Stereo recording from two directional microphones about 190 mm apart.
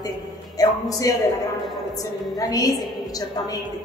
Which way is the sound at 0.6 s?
20° left (ahead or behind).